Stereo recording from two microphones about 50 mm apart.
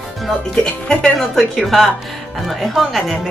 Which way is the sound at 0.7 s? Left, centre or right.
Left.